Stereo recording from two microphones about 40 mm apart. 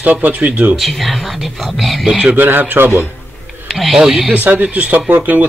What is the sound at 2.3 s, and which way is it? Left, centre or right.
Speech, right.